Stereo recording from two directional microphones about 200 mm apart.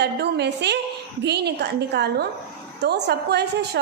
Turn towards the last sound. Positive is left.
turn(degrees=-55)  # may be behind; listen again after turning